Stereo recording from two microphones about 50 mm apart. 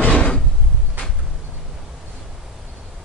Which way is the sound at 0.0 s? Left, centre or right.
Left.